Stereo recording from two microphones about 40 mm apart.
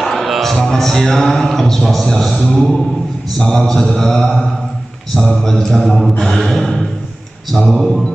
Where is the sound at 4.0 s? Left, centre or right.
Centre.